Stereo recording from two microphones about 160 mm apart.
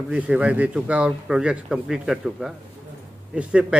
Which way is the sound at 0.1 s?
5° right (ahead or behind).